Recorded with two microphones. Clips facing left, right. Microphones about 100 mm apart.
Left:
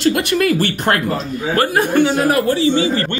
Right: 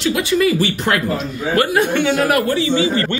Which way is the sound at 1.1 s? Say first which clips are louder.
Even; 40° left (ahead or behind).